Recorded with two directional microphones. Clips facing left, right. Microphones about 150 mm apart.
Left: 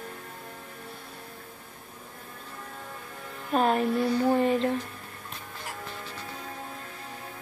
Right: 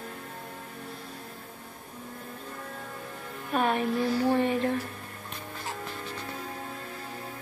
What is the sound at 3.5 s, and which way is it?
Music, 35° left (ahead or behind).